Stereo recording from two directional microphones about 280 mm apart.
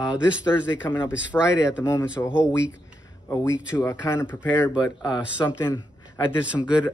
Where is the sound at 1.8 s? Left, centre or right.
Centre.